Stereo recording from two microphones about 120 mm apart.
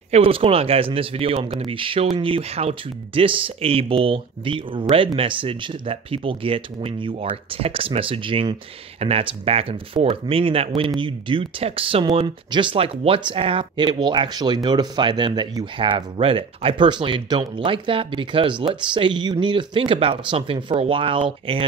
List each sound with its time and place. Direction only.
0.1 s speech: 50° right (ahead or behind)